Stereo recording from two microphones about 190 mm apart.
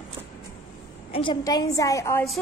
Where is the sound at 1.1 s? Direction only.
25° left (ahead or behind).